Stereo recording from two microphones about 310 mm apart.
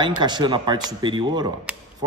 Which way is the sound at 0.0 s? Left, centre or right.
Centre.